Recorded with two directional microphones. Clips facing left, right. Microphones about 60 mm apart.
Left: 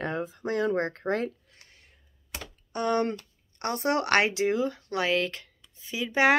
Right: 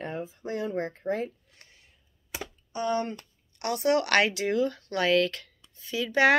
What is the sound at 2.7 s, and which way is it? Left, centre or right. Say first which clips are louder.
Speech: left 2 dB; left.